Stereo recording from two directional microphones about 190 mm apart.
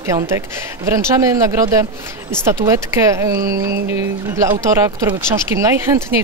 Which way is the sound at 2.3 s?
15° right (ahead or behind).